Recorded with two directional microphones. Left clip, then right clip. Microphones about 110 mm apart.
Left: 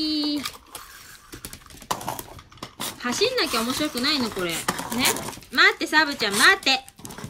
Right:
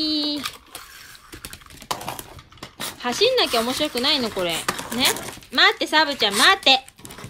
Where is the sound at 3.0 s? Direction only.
10° right (ahead or behind).